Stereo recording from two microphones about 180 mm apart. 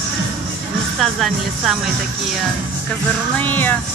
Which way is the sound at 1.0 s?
Centre (ahead or behind).